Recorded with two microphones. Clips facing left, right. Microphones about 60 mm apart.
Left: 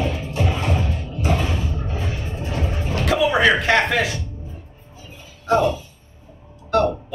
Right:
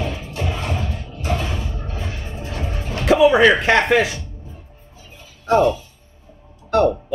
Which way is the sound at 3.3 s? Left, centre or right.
Right.